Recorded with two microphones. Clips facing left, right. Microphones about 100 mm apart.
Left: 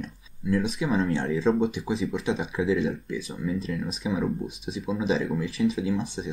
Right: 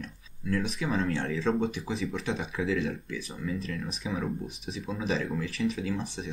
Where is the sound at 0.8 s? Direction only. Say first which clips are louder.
Left 4 dB; 10° left (ahead or behind); by 1.6 s 30° left (ahead or behind).